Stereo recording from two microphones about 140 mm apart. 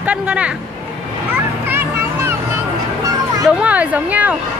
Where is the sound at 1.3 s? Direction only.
15° right (ahead or behind).